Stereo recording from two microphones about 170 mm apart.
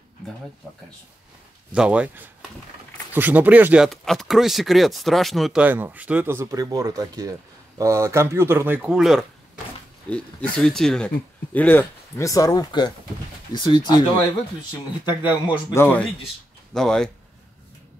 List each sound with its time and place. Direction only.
1.7 s speech: 5° right (ahead or behind)
10.0 s speech: 5° left (ahead or behind); by 14.0 s 25° left (ahead or behind)
15.0 s speech: 25° left (ahead or behind)
15.7 s speech: 10° left (ahead or behind)